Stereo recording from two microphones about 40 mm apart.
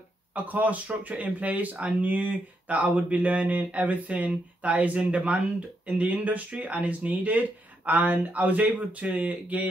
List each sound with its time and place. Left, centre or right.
0.3 s speech: right